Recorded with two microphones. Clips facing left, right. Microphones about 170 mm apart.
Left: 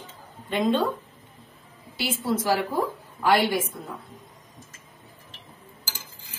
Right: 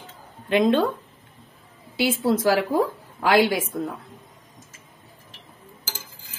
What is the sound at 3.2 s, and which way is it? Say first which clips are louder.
Speech: right 3 dB; 90° right.